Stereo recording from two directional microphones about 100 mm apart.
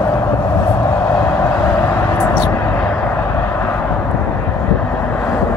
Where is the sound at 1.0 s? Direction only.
20° left (ahead or behind).